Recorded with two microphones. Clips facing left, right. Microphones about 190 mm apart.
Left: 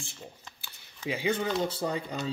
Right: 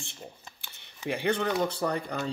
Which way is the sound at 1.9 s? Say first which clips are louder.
Right 1 dB; 50° right (ahead or behind).